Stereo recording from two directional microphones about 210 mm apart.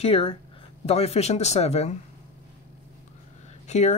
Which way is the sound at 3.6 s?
35° left (ahead or behind).